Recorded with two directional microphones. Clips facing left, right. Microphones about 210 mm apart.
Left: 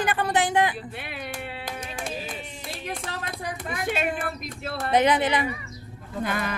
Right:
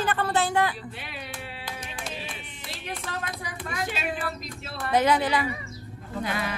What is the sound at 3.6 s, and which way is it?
Speech, 55° left (ahead or behind).